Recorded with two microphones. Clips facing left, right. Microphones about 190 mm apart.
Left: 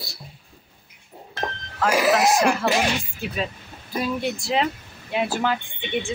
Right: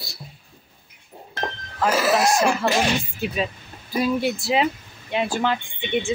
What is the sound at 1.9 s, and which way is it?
Speech, 15° left (ahead or behind).